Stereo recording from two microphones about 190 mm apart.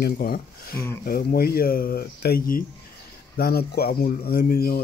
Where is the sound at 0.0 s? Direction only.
55° left (ahead or behind).